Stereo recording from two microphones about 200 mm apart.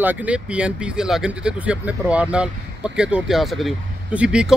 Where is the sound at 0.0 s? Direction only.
10° right (ahead or behind).